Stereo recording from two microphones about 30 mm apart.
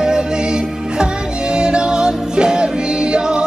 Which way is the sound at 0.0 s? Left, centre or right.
Right.